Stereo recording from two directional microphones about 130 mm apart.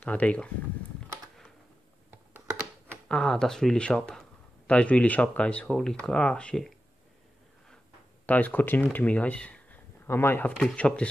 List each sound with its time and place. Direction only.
0.0 s speech: 10° left (ahead or behind)
3.1 s speech: 5° left (ahead or behind)
8.3 s speech: 15° left (ahead or behind)